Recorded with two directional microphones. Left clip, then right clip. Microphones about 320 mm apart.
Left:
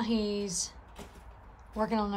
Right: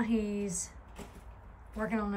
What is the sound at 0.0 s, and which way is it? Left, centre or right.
Speech, centre.